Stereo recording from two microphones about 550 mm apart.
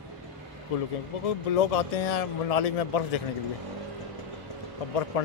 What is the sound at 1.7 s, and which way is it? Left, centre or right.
Speech, left.